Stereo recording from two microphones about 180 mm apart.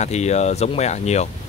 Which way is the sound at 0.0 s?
40° left (ahead or behind).